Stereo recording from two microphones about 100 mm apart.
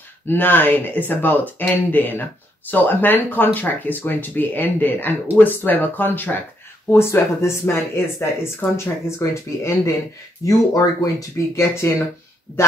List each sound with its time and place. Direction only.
0.3 s speech: 20° left (ahead or behind)